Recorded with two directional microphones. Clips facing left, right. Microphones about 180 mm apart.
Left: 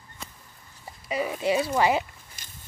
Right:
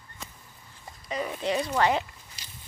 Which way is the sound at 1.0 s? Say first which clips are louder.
Left 4 dB; 10° left (ahead or behind).